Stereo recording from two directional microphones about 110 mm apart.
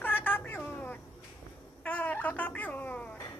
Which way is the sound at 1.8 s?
15° left (ahead or behind).